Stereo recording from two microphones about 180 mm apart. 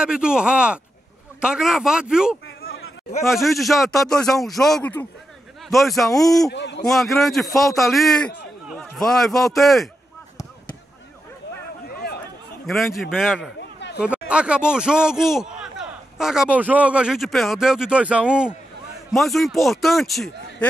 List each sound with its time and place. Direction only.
0.0 s speech: 5° right (ahead or behind)
3.4 s speech: centre (ahead or behind)
6.5 s a man's voice: 75° left (ahead or behind)
6.8 s a man's voice: centre (ahead or behind)
12.6 s a man's voice: centre (ahead or behind)
13.6 s a sound: 70° left (ahead or behind)
14.0 s speech: 5° right (ahead or behind)